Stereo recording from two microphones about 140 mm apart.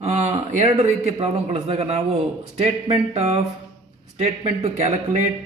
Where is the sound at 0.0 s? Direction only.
50° right (ahead or behind).